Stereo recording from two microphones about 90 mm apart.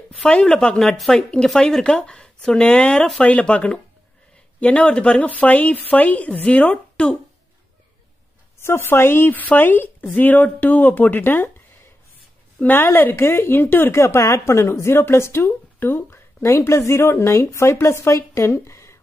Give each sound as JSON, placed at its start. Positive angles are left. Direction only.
{"t": 0.2, "sound": "speech", "side_deg": 10}
{"t": 8.5, "sound": "speech", "side_deg": 30}
{"t": 12.6, "sound": "speech", "side_deg": 25}